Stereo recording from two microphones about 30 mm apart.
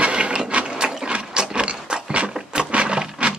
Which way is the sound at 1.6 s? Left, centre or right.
Right.